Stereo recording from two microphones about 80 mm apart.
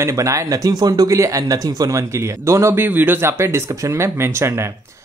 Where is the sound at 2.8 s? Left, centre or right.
Right.